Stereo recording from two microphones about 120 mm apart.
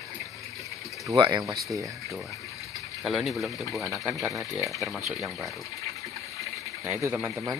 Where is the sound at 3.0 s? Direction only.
Centre (ahead or behind).